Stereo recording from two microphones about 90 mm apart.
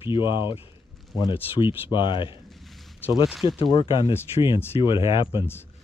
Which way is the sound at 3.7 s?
65° left (ahead or behind).